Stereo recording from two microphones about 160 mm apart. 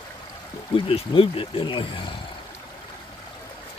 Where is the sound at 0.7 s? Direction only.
35° left (ahead or behind).